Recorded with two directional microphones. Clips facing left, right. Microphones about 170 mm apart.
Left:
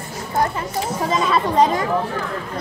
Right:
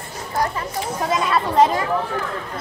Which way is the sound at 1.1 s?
Centre (ahead or behind).